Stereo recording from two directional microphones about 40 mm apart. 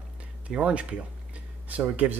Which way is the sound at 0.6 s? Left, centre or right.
Right.